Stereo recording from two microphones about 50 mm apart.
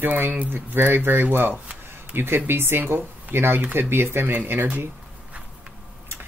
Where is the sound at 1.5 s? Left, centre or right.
Right.